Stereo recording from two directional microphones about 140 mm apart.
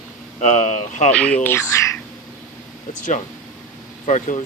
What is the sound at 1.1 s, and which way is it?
Speech, 10° left (ahead or behind).